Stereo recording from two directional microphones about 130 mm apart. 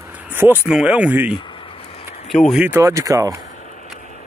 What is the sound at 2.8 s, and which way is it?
Speech, 25° right (ahead or behind).